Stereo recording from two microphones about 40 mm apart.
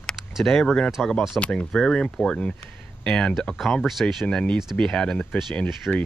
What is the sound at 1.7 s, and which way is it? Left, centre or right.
Speech, centre.